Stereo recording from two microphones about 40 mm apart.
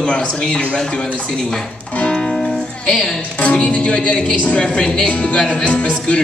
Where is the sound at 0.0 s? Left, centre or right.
Left.